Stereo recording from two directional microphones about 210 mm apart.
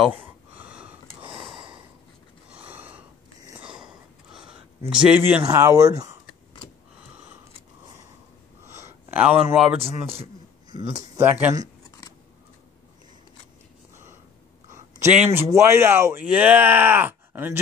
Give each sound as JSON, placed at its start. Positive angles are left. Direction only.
{"t": 0.0, "sound": "a sound", "side_deg": -5}
{"t": 5.5, "sound": "speech", "side_deg": -15}
{"t": 8.8, "sound": "a sound", "side_deg": -5}
{"t": 10.8, "sound": "speech", "side_deg": -30}
{"t": 11.1, "sound": "speech", "side_deg": -10}
{"t": 15.1, "sound": "speech", "side_deg": -10}